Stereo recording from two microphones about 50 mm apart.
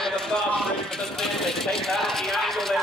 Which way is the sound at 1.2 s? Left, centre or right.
Centre.